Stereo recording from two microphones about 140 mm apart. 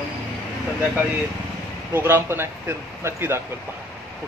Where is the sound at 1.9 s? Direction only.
15° right (ahead or behind).